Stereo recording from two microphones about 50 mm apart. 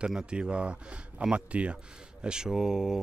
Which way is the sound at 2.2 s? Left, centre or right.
Centre.